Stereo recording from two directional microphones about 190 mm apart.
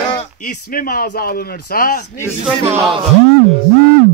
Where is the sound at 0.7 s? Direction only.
50° left (ahead or behind).